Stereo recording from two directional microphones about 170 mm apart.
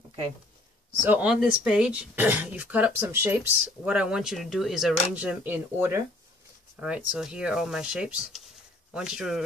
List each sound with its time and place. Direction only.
1.0 s speech: 10° right (ahead or behind)